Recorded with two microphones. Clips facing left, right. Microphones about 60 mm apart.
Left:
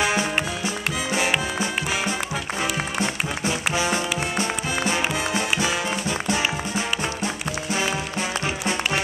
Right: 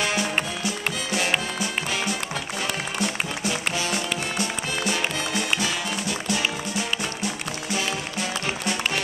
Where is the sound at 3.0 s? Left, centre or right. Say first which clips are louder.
Left 2 dB; left.